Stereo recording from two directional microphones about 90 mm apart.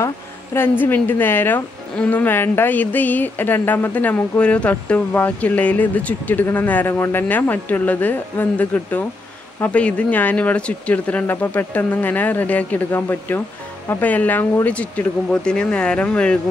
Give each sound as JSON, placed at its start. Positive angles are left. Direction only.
{"t": 0.6, "sound": "speech", "side_deg": 20}